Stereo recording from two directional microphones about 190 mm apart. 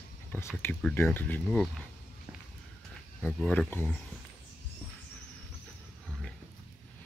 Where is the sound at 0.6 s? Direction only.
10° left (ahead or behind).